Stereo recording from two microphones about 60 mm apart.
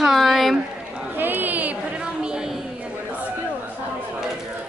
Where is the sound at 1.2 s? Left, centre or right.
Right.